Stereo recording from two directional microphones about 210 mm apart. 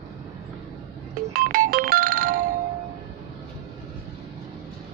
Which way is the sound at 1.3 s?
40° right (ahead or behind).